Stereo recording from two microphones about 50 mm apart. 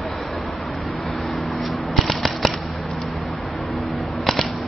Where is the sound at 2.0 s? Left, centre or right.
Centre.